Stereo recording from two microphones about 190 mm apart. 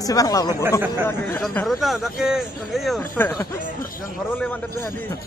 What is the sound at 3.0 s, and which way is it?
Speech, 10° left (ahead or behind).